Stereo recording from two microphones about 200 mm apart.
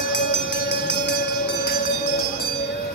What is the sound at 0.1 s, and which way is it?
Music, 60° left (ahead or behind).